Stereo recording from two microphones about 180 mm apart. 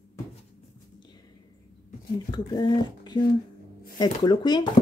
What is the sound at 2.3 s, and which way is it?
Speech, 25° left (ahead or behind).